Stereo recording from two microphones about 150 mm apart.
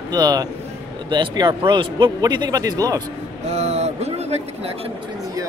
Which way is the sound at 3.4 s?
45° right (ahead or behind).